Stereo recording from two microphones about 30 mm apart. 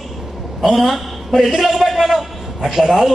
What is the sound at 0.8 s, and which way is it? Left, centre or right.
A man's voice, centre.